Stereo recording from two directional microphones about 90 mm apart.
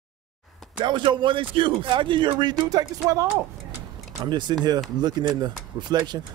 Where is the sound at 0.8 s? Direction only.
65° right (ahead or behind).